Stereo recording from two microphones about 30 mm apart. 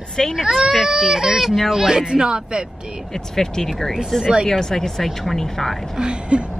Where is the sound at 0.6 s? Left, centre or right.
Centre; by 2.6 s right.